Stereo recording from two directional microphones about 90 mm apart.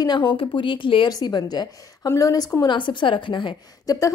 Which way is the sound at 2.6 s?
65° left (ahead or behind).